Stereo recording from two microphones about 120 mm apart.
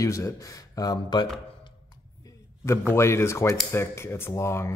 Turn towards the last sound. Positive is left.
turn(degrees=25)  # may be behind; listen again after turning